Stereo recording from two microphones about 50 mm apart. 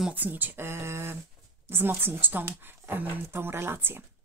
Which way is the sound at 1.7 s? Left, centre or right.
Right.